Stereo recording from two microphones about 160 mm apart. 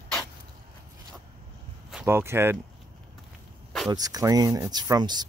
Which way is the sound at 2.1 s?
15° right (ahead or behind).